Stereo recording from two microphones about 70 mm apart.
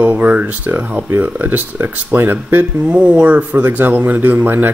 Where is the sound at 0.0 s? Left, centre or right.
Right.